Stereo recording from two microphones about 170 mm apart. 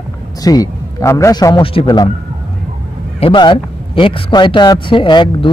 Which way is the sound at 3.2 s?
30° left (ahead or behind).